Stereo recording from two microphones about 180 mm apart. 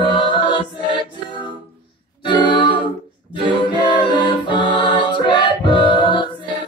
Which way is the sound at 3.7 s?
25° left (ahead or behind).